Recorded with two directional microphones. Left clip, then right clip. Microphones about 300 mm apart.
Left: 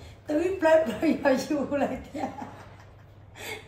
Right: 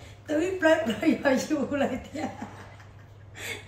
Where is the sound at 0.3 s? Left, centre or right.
Centre.